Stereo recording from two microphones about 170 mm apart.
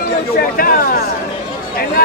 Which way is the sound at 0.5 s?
60° left (ahead or behind).